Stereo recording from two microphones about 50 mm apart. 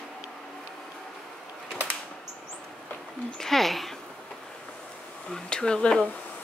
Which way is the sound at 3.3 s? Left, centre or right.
Centre.